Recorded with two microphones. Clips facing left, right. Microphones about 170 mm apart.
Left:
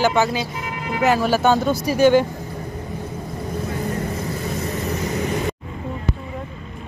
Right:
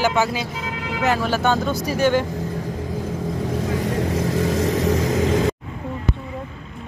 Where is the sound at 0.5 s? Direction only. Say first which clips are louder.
Left 1 dB; 90° right.